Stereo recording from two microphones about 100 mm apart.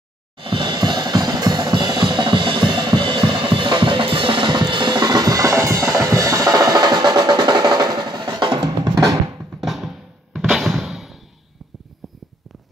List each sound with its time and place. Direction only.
0.4 s drum kit: 55° right (ahead or behind); by 5.9 s 30° right (ahead or behind)
6.0 s percussion: 30° right (ahead or behind)
9.6 s music: centre (ahead or behind)